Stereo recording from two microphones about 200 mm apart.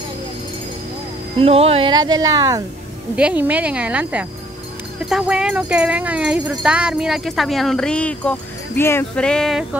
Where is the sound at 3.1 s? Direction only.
5° right (ahead or behind).